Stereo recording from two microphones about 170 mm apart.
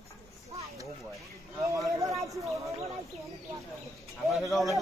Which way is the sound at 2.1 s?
Centre (ahead or behind).